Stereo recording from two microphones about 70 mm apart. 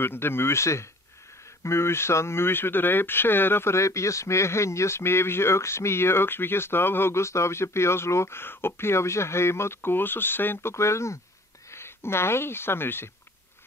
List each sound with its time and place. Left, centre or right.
0.0 s speech: left